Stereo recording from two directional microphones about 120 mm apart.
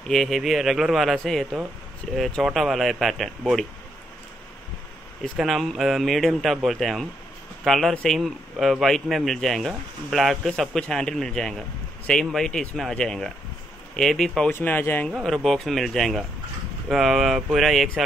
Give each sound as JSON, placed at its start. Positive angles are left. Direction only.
{"t": 0.1, "sound": "a man's voice", "side_deg": 0}
{"t": 5.4, "sound": "a man's voice", "side_deg": 0}
{"t": 14.5, "sound": "speech", "side_deg": 15}
{"t": 15.0, "sound": "a man's voice", "side_deg": 0}